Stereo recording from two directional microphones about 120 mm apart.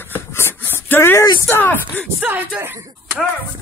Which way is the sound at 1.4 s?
15° left (ahead or behind).